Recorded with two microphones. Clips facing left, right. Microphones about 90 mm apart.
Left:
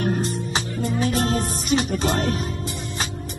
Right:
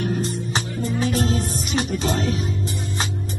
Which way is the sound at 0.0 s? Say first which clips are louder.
Left 1 dB; 50° left (ahead or behind).